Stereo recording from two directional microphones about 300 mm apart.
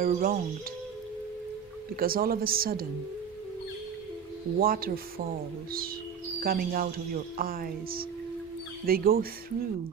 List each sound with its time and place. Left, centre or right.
0.0 s speech: right
2.0 s speech: right
4.6 s speech: right
6.4 s speech: right